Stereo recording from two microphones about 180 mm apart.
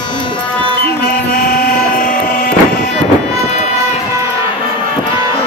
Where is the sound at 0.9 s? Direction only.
55° left (ahead or behind).